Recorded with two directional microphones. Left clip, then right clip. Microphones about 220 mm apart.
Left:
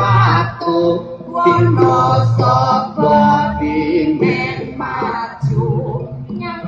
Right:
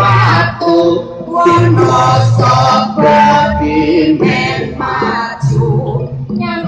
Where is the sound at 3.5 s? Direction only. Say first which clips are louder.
Right 5 dB; 35° left (ahead or behind).